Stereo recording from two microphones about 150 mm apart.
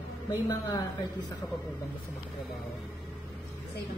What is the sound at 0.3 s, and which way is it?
Speech, 25° left (ahead or behind).